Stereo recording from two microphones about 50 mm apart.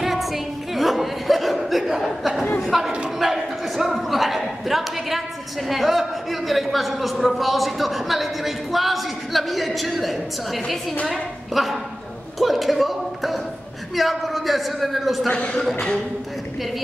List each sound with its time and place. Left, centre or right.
0.0 s a sound: centre
5.7 s a man's voice: centre
15.3 s speech: left